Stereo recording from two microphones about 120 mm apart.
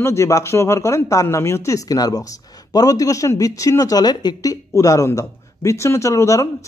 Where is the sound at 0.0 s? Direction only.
25° left (ahead or behind).